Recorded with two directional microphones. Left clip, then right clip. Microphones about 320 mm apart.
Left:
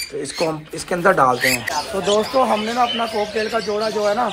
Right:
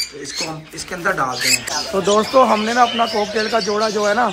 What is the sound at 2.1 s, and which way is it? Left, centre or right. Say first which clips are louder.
Speech: right 4 dB; right.